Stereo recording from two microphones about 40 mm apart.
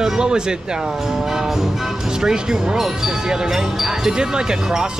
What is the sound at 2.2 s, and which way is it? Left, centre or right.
Speech, centre.